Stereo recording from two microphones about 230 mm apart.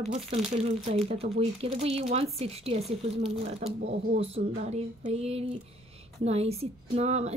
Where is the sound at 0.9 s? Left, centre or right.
Right.